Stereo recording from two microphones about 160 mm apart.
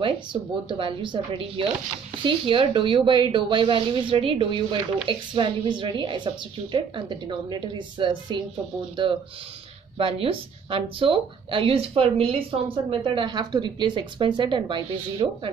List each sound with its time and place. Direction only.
0.0 s a woman's voice: 30° right (ahead or behind)
9.9 s a woman's voice: 35° right (ahead or behind)